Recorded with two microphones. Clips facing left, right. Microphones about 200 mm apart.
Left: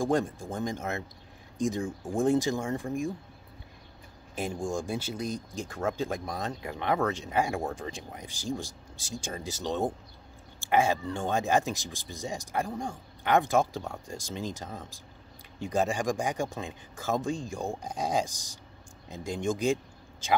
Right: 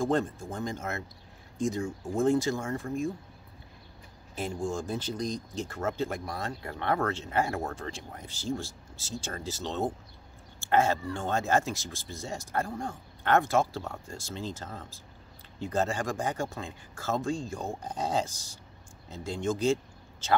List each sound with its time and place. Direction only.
0.0 s speech: 15° left (ahead or behind)
4.4 s speech: 15° left (ahead or behind)